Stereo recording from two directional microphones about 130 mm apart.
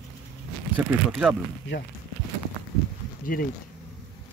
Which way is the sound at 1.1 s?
10° right (ahead or behind).